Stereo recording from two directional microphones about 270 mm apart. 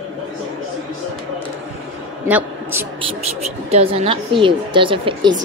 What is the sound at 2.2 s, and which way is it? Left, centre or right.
Speech, centre.